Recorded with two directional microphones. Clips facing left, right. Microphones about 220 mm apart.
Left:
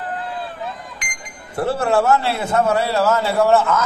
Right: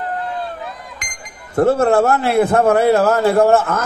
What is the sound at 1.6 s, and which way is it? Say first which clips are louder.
A man's voice: right 5 dB; 45° right (ahead or behind).